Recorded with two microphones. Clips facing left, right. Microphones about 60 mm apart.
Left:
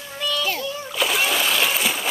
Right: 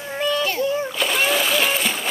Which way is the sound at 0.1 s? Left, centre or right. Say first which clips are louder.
Right 4 dB; right.